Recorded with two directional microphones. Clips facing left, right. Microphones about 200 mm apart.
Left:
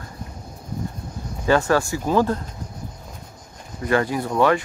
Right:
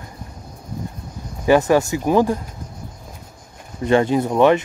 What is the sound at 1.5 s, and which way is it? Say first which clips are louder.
Speech: right 4 dB; 20° right (ahead or behind).